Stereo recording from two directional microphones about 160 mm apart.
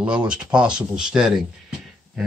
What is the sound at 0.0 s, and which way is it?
Speech, 5° right (ahead or behind).